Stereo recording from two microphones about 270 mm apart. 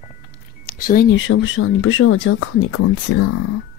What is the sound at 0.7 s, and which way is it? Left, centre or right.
Speech, left.